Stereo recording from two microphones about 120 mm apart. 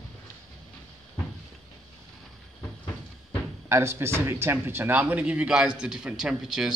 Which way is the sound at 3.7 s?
20° right (ahead or behind).